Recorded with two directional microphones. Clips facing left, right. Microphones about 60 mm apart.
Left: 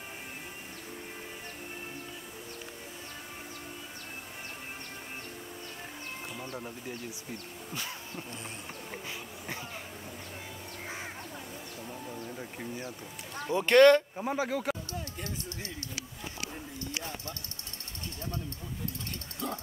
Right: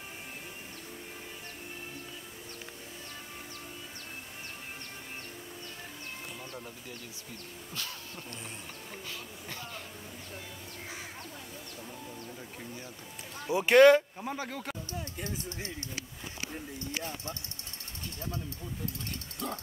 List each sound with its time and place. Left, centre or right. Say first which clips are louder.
7.7 s a sound: left 3 dB; centre
12.3 s bird: left 4 dB; centre
13.4 s speech: even; centre
14.1 s speech: left 5 dB; centre
14.5 s speech: left 7 dB; centre
19.4 s a sound: left 1 dB; centre